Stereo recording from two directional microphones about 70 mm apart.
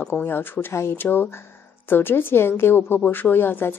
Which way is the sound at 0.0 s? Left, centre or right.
Left.